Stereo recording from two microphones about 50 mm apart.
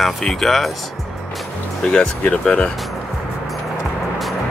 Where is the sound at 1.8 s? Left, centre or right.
Left.